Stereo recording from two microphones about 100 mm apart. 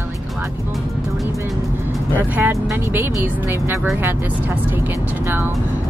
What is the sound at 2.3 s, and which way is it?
Speech, 25° right (ahead or behind).